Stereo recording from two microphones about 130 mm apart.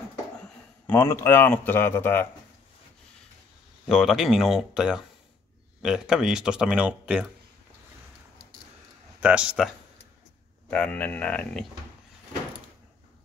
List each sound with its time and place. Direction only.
0.8 s speech: 20° left (ahead or behind)
3.8 s speech: centre (ahead or behind)
9.2 s speech: 10° right (ahead or behind)
10.7 s speech: 10° left (ahead or behind)